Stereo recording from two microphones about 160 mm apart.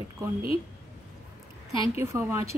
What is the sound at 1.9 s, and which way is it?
Speech, 15° right (ahead or behind).